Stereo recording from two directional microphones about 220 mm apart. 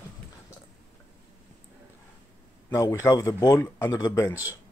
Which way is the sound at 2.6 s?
15° left (ahead or behind).